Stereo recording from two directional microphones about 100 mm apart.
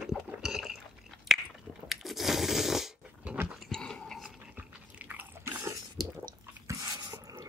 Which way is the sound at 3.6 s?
5° left (ahead or behind).